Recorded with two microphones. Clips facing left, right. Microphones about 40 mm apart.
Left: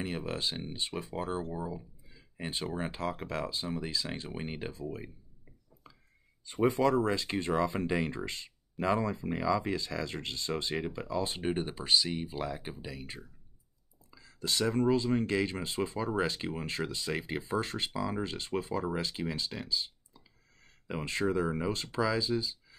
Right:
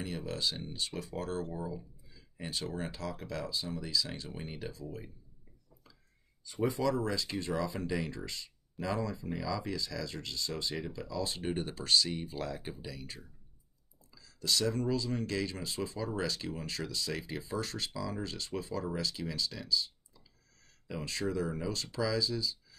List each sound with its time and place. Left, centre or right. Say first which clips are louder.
0.0 s speech: left 2 dB; left
6.4 s speech: left 4 dB; left